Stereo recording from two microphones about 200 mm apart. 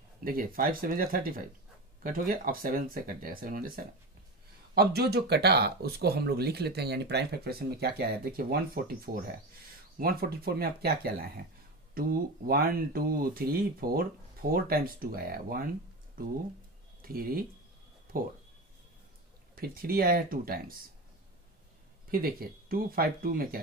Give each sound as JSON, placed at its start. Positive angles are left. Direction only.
{"t": 0.2, "sound": "speech", "side_deg": -45}
{"t": 19.5, "sound": "speech", "side_deg": -45}
{"t": 22.1, "sound": "speech", "side_deg": -45}